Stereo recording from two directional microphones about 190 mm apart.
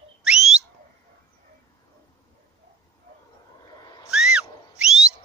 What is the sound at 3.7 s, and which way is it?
Owl, 20° left (ahead or behind).